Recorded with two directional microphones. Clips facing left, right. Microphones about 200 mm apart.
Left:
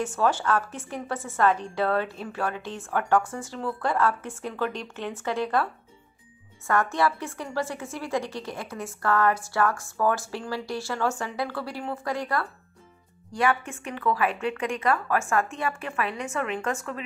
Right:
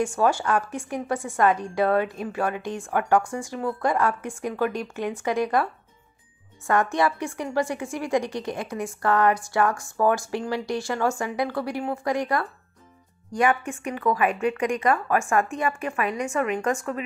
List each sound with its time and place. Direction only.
0.0 s a woman's voice: 10° right (ahead or behind)
6.7 s a woman's voice: 15° right (ahead or behind)